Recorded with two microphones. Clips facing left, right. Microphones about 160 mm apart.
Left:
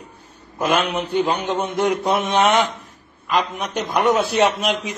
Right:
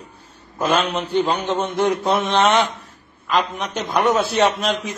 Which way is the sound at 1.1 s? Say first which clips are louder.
Right 1 dB; 10° left (ahead or behind).